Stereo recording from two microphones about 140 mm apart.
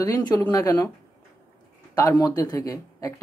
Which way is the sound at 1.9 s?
25° left (ahead or behind).